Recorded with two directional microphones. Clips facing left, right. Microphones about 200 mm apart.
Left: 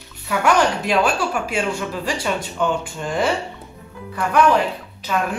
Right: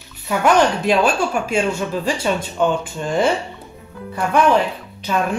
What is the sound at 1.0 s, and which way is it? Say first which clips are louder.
A man's voice: right 2 dB; 25° right (ahead or behind).